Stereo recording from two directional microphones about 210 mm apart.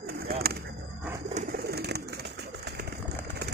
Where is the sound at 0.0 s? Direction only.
45° right (ahead or behind).